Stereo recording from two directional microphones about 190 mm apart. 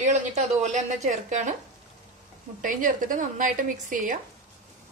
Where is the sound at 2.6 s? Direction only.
45° right (ahead or behind).